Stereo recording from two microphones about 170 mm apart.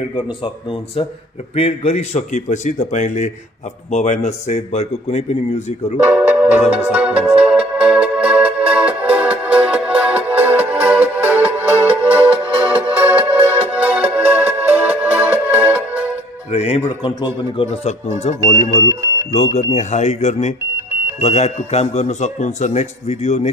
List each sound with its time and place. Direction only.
1.5 s a man's voice: 35° left (ahead or behind)
5.9 s music: 10° right (ahead or behind)
12.0 s music: 35° right (ahead or behind)
12.6 s music: 10° right (ahead or behind)
16.5 s a man's voice: 35° left (ahead or behind)